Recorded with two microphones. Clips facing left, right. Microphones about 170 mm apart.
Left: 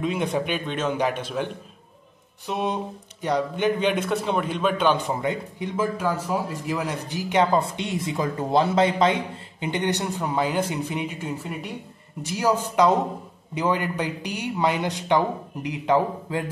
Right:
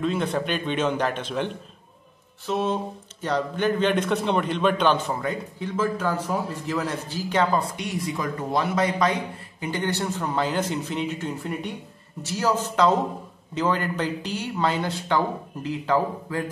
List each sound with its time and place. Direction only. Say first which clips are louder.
0.0 s speech: even; 15° left (ahead or behind)
0.7 s a man's voice: even; centre (ahead or behind)
5.0 s speech: left 2 dB; 20° left (ahead or behind)